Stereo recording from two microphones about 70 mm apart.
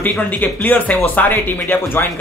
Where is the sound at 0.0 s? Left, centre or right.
Left.